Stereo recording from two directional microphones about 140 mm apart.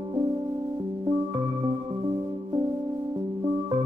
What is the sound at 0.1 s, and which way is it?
Music, 30° right (ahead or behind).